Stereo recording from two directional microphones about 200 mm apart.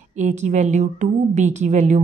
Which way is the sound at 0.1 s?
35° right (ahead or behind).